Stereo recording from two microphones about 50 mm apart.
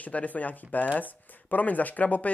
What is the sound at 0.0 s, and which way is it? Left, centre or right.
Speech, left.